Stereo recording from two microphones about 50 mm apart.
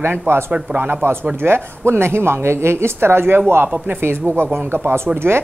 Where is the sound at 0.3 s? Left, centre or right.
Right.